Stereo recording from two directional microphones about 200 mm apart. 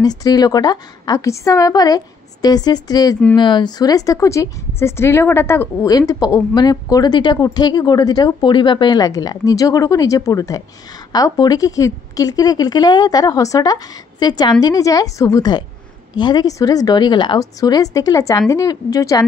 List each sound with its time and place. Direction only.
0.0 s a woman's voice: 20° left (ahead or behind)